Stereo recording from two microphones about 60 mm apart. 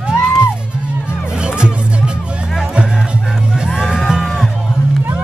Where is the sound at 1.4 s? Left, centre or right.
Centre.